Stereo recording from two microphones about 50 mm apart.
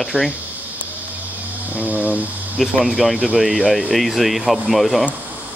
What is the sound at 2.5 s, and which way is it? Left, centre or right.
Speech, centre.